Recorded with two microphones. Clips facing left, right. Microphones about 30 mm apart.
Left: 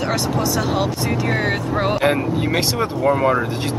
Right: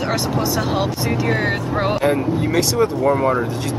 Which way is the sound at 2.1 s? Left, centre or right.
Centre.